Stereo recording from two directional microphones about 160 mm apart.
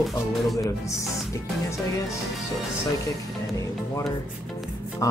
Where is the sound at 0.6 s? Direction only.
20° left (ahead or behind).